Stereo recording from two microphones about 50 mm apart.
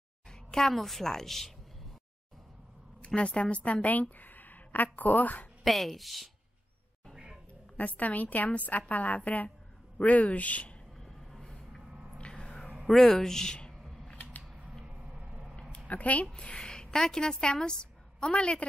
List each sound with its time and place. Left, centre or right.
0.3 s a sound: centre
0.7 s a woman's voice: centre
3.2 s a woman's voice: left
5.6 s a woman's voice: centre
7.7 s a woman's voice: left
11.0 s vehicle: centre
11.9 s a sound: centre
12.2 s a sound: centre
13.1 s a woman's voice: centre
15.1 s a sound: centre
15.9 s a woman's voice: left
16.3 s a woman's voice: centre